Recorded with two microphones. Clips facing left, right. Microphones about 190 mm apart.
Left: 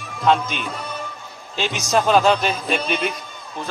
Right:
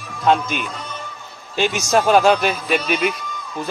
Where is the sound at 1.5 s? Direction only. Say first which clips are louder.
Right 5 dB; 55° right (ahead or behind).